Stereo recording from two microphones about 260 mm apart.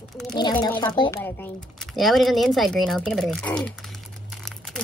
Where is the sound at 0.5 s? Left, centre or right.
Centre.